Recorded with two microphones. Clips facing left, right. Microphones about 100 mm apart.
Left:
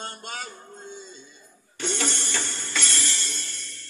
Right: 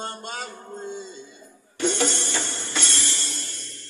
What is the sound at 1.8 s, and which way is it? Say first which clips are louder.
Music: right 6 dB; 40° right (ahead or behind).